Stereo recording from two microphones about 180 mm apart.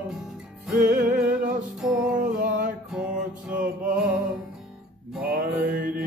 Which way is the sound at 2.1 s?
50° right (ahead or behind).